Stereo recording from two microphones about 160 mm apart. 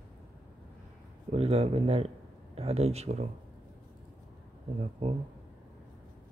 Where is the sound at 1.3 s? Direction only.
40° right (ahead or behind).